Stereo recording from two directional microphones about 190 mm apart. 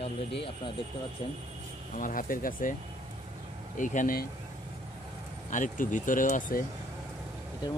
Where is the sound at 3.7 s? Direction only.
45° left (ahead or behind).